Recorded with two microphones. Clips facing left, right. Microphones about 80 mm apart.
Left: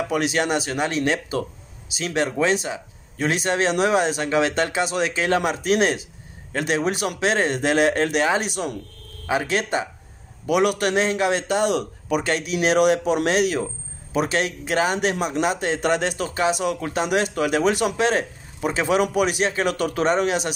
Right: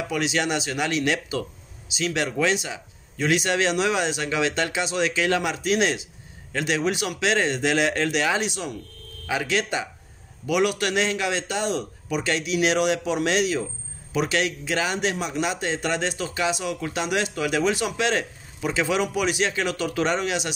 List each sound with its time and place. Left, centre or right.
0.1 s a man's voice: left